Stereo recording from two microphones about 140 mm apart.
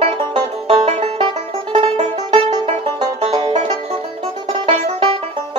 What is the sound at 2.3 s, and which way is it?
Music, 35° right (ahead or behind).